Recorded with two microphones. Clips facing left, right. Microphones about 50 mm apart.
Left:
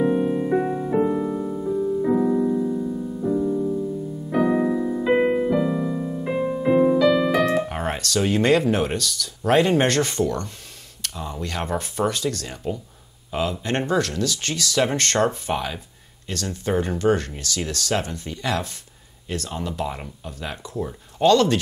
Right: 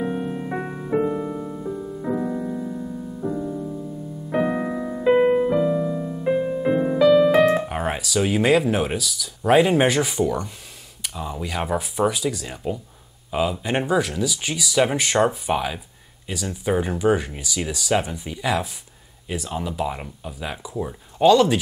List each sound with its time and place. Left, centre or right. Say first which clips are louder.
0.0 s music: left 6 dB; centre
4.3 s music: left 3 dB; centre
5.6 s music: right 2 dB; centre
7.3 s music: right 3 dB; right
7.6 s speech: right 1 dB; centre